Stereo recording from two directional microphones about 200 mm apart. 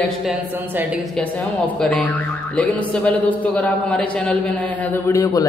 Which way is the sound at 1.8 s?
5° left (ahead or behind).